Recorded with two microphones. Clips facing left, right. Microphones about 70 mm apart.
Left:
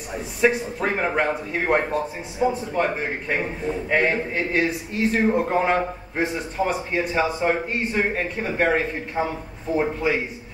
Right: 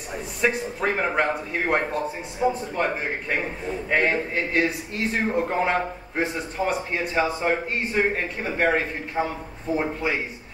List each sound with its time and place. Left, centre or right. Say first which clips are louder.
0.1 s speech: left 4 dB; centre